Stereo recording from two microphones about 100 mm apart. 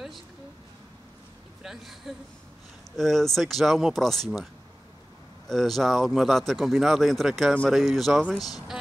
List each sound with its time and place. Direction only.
1.6 s speech: 5° right (ahead or behind)
5.5 s speech: 5° left (ahead or behind)